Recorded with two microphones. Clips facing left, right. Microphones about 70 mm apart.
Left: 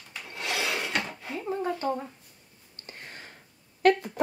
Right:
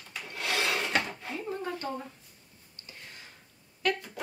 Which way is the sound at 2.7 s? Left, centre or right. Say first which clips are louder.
Left 5 dB; left.